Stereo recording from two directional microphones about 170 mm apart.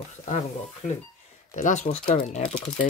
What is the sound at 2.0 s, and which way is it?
Speech, 30° left (ahead or behind).